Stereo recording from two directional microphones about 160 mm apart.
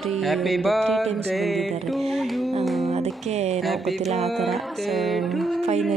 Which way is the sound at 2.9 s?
40° right (ahead or behind).